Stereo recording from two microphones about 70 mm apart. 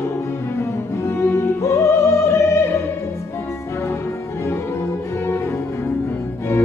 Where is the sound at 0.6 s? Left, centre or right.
Left.